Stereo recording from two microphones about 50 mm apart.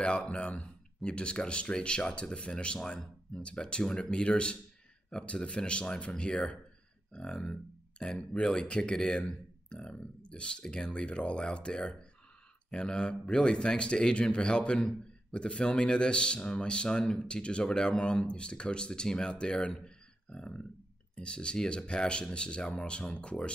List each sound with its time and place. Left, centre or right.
0.0 s a man's voice: left